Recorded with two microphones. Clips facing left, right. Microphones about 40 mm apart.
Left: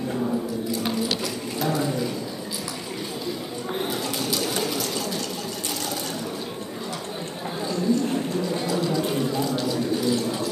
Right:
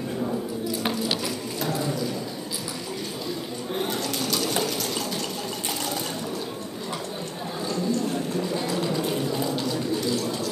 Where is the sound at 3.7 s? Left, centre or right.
Centre.